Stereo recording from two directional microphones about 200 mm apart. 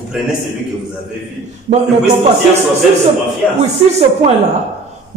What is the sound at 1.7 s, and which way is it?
Speech, 35° right (ahead or behind).